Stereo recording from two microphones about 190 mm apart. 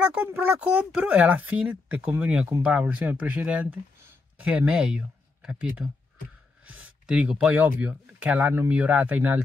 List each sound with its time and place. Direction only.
0.1 s speech: 10° right (ahead or behind)